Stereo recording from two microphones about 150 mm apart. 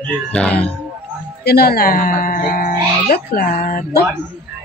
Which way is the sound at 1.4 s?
90° left.